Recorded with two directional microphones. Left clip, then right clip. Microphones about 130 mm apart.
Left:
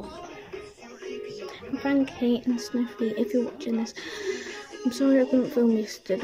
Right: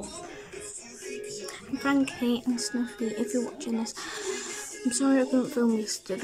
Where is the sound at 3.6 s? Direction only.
5° right (ahead or behind).